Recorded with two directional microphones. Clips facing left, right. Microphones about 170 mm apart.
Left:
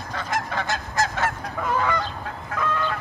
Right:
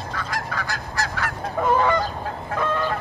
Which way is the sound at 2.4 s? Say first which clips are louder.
Right 2 dB; 30° right (ahead or behind).